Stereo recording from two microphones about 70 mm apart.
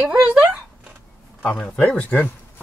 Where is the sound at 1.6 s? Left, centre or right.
Centre.